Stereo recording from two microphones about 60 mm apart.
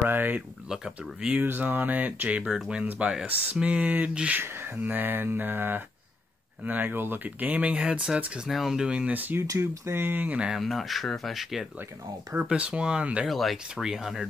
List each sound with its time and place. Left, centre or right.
0.0 s mantra: right
0.7 s speech: centre
1.4 s speech: right
4.4 s mantra: right
6.6 s speech: right
7.7 s speech: centre
8.5 s speech: centre
8.8 s speech: centre
9.6 s mantra: right
10.5 s speech: centre
12.4 s speech: centre
13.3 s speech: centre